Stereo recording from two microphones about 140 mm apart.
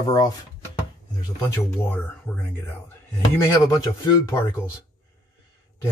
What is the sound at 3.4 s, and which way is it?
Speech, 20° left (ahead or behind).